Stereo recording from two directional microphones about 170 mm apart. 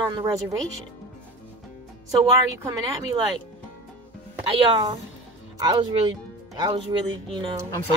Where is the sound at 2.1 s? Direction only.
20° right (ahead or behind).